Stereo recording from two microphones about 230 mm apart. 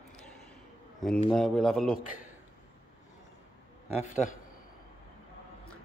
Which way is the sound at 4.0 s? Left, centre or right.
Left.